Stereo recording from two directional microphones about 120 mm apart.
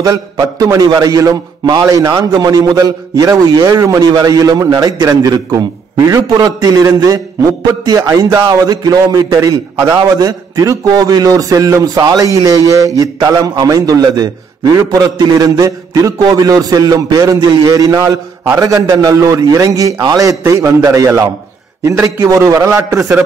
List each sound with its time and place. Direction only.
0.0 s a man's voice: 30° right (ahead or behind)